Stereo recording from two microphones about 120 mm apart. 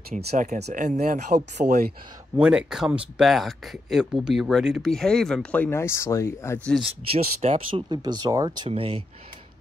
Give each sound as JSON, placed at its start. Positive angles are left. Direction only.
{"t": 0.1, "sound": "speech", "side_deg": -90}
{"t": 2.3, "sound": "speech", "side_deg": -10}
{"t": 7.1, "sound": "speech", "side_deg": -50}
{"t": 7.9, "sound": "speech", "side_deg": -35}
{"t": 8.6, "sound": "speech", "side_deg": -50}